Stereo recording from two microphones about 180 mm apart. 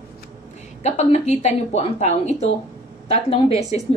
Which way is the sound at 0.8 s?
40° left (ahead or behind).